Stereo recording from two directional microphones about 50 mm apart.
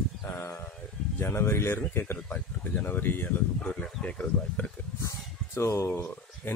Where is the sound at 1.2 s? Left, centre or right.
Left.